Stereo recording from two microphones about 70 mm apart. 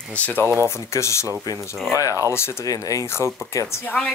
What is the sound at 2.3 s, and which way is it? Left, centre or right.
Speech, left.